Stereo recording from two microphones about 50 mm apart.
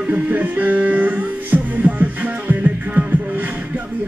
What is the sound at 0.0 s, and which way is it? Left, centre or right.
Music, right.